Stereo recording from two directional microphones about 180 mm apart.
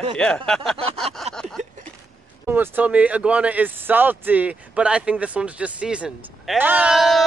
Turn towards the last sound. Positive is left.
turn(degrees=0)  # may be behind; listen again after turning